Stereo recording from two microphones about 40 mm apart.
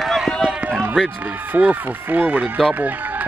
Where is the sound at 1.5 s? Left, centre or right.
Right.